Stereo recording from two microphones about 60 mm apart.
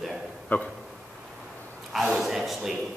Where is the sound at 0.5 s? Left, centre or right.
Left.